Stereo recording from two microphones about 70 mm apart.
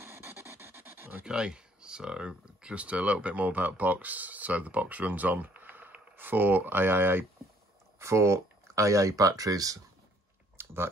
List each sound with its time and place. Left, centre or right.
0.0 s a sound: right
1.2 s speech: centre; by 7.2 s right
8.0 s speech: right
10.6 s chewing: right